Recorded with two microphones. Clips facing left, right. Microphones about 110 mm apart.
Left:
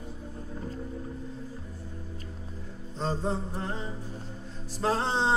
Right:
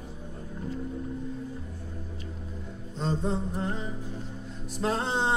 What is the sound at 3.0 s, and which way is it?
Music, 35° left (ahead or behind).